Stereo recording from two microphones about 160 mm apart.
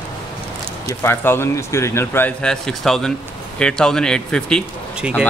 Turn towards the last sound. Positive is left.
turn(degrees=-5)  # may be behind; listen again after turning